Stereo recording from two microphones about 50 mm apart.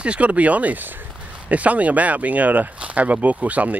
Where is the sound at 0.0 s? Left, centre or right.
Right.